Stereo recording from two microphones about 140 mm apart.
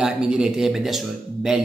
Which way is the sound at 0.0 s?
5° right (ahead or behind).